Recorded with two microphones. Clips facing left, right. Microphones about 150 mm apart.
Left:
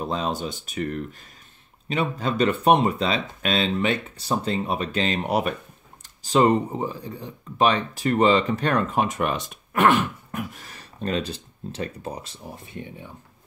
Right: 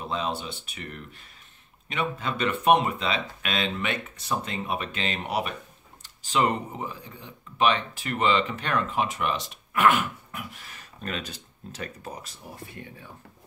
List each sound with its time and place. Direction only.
0.0 s speech: 40° left (ahead or behind); by 13.0 s 20° left (ahead or behind)